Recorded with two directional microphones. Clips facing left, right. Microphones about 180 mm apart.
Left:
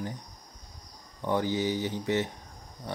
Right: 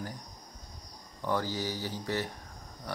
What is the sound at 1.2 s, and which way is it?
Speech, 20° left (ahead or behind).